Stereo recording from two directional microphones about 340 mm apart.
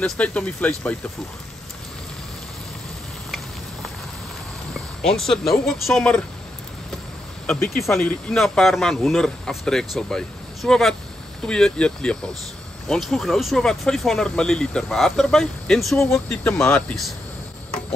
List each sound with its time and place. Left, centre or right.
0.0 s speech: centre
4.7 s speech: centre
7.4 s speech: centre